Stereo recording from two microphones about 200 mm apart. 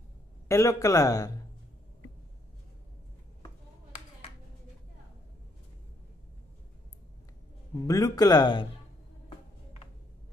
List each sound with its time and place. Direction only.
0.5 s a man's voice: 15° left (ahead or behind)
7.8 s speech: 20° left (ahead or behind)